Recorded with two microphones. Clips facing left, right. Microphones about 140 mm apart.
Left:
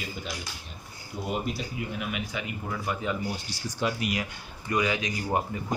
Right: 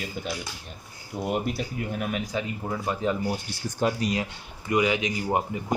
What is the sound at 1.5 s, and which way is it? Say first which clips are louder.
Speech: right 3 dB; 45° right (ahead or behind).